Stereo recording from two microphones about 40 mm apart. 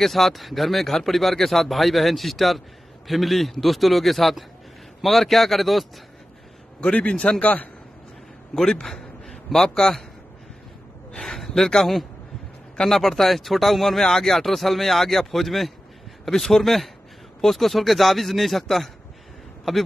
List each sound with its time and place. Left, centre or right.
0.0 s speech: centre
6.8 s a man's voice: left
8.8 s a man's voice: centre
11.1 s speech: centre
16.3 s speech: centre